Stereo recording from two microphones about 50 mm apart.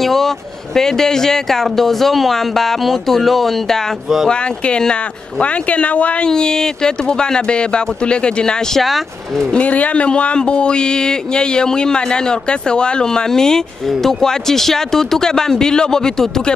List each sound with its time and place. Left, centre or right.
0.0 s speech: centre
4.3 s speech: centre
6.2 s speech: centre
8.8 s speech: centre
9.5 s speech: left; by 16.5 s centre